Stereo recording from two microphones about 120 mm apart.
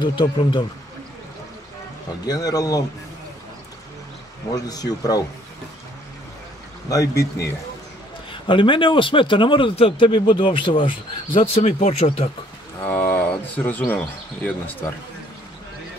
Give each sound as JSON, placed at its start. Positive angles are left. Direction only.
{"t": 0.0, "sound": "speech", "side_deg": 40}
{"t": 2.2, "sound": "speech", "side_deg": 30}
{"t": 4.6, "sound": "speech", "side_deg": 30}
{"t": 6.9, "sound": "speech", "side_deg": 25}
{"t": 8.3, "sound": "a man's voice", "side_deg": 45}
{"t": 11.6, "sound": "speech", "side_deg": 65}
{"t": 12.8, "sound": "speech", "side_deg": 15}